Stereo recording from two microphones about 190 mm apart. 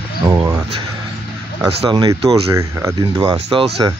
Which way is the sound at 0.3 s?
15° right (ahead or behind).